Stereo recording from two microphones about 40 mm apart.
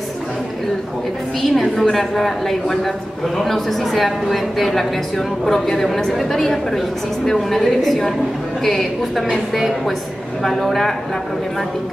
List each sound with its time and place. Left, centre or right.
1.5 s a woman's voice: centre